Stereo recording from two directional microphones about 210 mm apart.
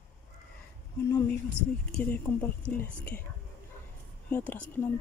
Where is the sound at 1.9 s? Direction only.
10° left (ahead or behind).